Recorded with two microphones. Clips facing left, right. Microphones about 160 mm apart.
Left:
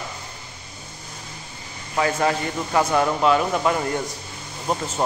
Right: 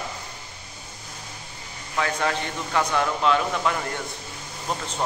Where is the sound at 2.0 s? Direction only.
15° left (ahead or behind).